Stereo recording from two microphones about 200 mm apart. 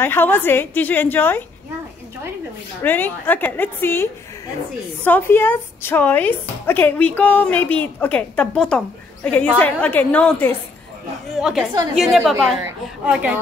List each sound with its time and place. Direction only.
0.0 s a woman's voice: 10° left (ahead or behind)
2.8 s a woman's voice: 10° left (ahead or behind); by 13.4 s 5° right (ahead or behind)